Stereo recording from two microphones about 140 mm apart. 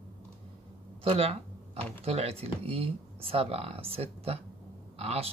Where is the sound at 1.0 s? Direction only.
40° right (ahead or behind).